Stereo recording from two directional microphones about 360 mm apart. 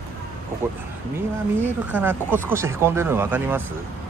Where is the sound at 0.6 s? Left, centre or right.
Centre.